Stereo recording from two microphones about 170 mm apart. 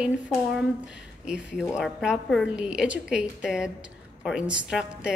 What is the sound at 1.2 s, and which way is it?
A woman's voice, 5° right (ahead or behind).